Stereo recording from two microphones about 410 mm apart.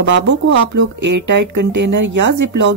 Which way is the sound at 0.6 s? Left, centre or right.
Right.